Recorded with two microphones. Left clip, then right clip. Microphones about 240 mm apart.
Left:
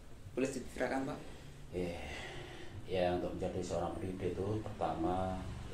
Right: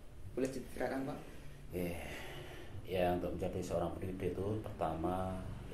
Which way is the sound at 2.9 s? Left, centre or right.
Right.